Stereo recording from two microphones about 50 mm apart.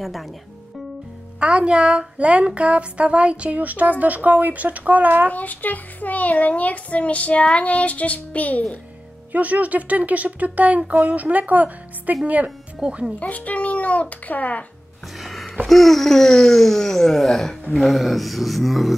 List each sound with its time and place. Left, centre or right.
0.0 s a sound: centre
1.4 s a woman's voice: right
5.3 s a child's voice: left
9.3 s speech: right
12.4 s speech: centre
13.2 s speech: left
15.1 s a sound: centre